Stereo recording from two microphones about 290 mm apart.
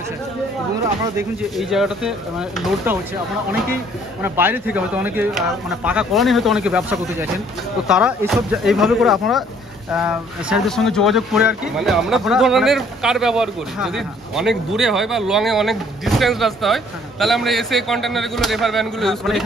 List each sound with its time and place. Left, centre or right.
1.1 s speech: centre
4.2 s a man's voice: centre